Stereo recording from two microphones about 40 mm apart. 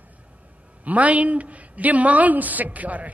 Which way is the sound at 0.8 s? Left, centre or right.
Right.